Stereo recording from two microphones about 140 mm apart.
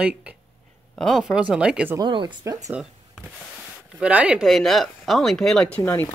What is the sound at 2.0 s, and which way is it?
Speech, 35° right (ahead or behind).